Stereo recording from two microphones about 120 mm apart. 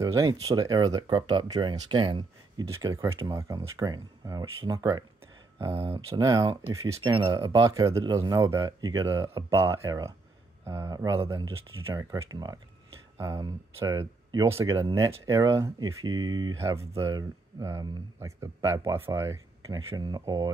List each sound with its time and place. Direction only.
0.0 s speech: 30° right (ahead or behind)
2.7 s speech: 30° right (ahead or behind)
4.6 s a sound: 30° right (ahead or behind)
6.1 s speech: 30° right (ahead or behind)
7.0 s speech: 45° right (ahead or behind)
7.2 s speech: 30° right (ahead or behind)